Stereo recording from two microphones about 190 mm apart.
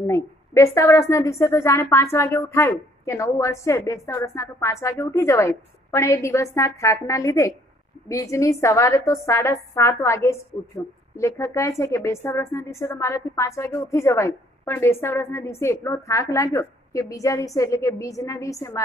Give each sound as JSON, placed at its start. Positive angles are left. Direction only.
{"t": 0.0, "sound": "a woman's voice", "side_deg": 15}